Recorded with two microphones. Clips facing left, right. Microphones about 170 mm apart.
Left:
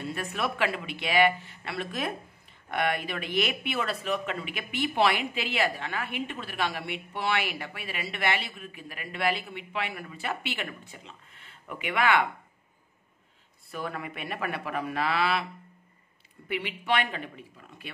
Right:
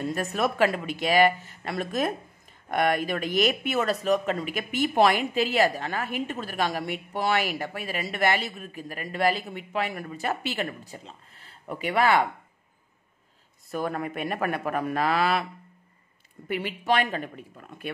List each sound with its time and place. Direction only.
0.0 s speech: 40° right (ahead or behind)
13.7 s speech: 45° right (ahead or behind)
16.4 s speech: 45° right (ahead or behind)